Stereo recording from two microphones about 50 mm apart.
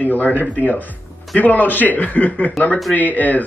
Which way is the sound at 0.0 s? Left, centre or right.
Left.